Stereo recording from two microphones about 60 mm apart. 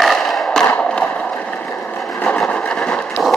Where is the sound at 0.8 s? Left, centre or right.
Centre.